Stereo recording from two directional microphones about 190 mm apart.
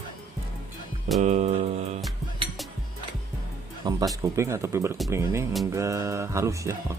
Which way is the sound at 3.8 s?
20° right (ahead or behind).